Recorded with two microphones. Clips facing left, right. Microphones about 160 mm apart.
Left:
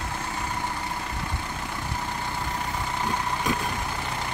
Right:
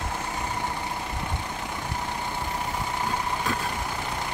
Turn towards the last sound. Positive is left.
turn(degrees=15)  # may be behind; listen again after turning